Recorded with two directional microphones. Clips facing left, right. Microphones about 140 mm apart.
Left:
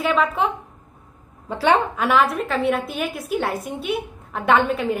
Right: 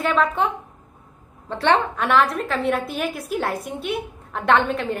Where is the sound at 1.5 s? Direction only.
5° left (ahead or behind).